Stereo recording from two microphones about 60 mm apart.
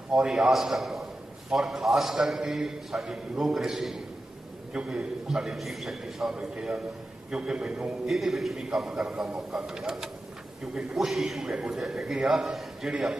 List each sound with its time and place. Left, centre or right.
0.1 s a man's voice: centre
6.3 s a man's voice: centre